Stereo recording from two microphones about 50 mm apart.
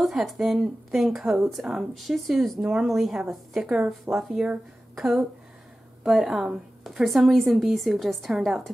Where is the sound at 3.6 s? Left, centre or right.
Right.